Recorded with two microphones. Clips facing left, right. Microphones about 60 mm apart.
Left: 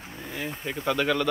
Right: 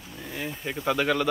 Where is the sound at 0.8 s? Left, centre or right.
Centre.